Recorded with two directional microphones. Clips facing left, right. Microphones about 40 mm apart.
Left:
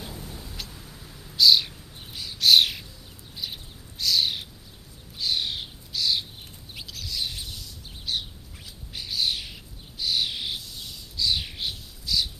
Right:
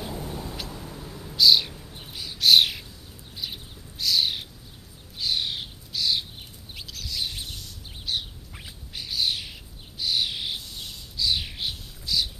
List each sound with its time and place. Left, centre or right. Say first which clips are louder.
0.2 s vehicle: right 5 dB; right
1.3 s a sound: even; centre
2.0 s bird: even; centre
6.7 s chirp: even; centre
8.1 s bird: even; centre